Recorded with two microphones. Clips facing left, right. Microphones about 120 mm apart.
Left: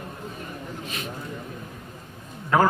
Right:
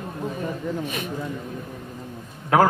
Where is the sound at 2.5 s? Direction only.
65° right (ahead or behind).